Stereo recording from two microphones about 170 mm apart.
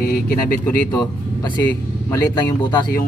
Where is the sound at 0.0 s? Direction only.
60° left (ahead or behind).